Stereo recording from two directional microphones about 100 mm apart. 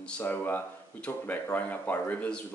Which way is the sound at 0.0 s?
20° left (ahead or behind).